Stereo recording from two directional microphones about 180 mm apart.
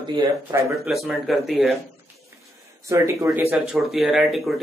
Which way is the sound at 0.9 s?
Centre (ahead or behind).